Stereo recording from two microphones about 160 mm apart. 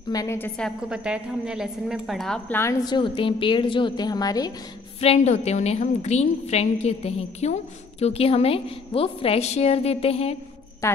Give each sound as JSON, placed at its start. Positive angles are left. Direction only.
{"t": 0.1, "sound": "a woman's voice", "side_deg": 20}
{"t": 0.6, "sound": "a woman's voice", "side_deg": 0}
{"t": 2.6, "sound": "a woman's voice", "side_deg": 20}
{"t": 5.0, "sound": "a woman's voice", "side_deg": 45}
{"t": 10.8, "sound": "a woman's voice", "side_deg": 20}